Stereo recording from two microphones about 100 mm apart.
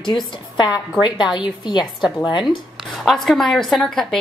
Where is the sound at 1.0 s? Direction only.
50° left (ahead or behind).